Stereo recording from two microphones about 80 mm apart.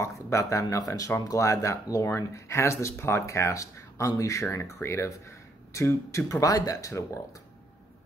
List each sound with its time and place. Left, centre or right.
0.0 s speech: left